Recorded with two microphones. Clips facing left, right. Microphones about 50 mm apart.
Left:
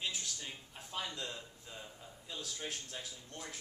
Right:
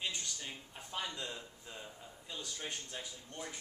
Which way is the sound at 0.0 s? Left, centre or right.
Centre.